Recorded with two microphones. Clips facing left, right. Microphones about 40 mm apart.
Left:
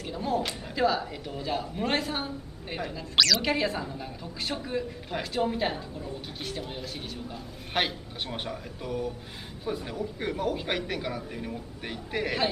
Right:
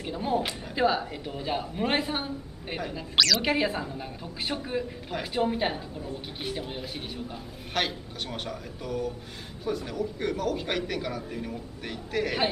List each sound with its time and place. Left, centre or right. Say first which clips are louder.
0.0 s speech: right 1 dB; centre
3.2 s a woman's voice: even; centre
3.4 s speech: right 1 dB; centre
7.7 s a man's voice: left 1 dB; centre